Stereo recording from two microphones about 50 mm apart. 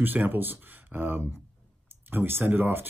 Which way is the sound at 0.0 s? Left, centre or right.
Right.